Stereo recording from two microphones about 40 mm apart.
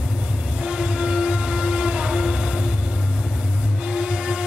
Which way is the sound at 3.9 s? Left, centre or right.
Right.